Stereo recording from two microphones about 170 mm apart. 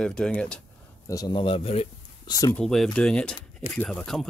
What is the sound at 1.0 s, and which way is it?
Speech, 20° left (ahead or behind).